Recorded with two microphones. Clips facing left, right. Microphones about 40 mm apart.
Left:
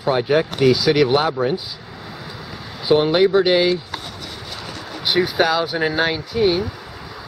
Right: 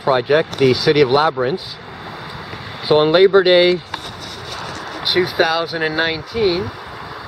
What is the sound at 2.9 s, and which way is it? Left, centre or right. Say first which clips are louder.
Speech: right 3 dB; right.